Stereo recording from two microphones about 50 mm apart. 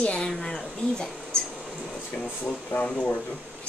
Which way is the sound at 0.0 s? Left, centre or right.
Left.